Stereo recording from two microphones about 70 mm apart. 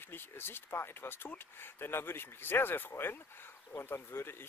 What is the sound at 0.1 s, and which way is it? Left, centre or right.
Speech, left.